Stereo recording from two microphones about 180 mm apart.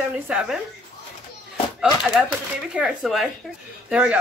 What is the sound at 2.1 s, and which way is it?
A woman's voice, 5° right (ahead or behind).